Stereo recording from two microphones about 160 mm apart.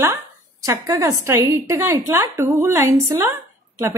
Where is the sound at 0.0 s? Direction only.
20° right (ahead or behind).